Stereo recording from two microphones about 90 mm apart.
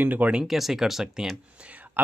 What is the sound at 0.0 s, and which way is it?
Speech, 15° right (ahead or behind).